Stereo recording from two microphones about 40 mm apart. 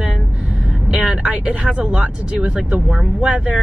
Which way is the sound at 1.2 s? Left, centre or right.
Right.